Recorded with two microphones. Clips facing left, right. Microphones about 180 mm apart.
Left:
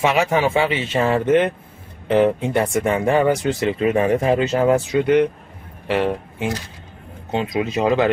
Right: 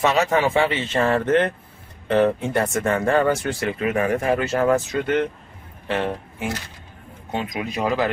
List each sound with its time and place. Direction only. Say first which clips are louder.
0.0 s speech: left 1 dB; 10° left (ahead or behind)
7.2 s speech: left 5 dB; 25° left (ahead or behind)